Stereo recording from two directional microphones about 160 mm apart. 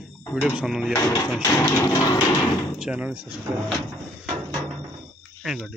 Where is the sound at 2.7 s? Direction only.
5° right (ahead or behind).